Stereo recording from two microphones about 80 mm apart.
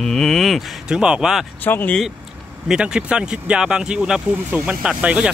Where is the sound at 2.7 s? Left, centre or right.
Centre.